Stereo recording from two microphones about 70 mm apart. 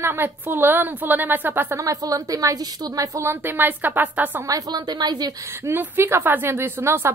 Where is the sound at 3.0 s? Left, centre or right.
Right.